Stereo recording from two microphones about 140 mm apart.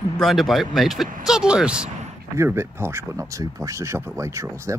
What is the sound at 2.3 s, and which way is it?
Speech, 20° right (ahead or behind).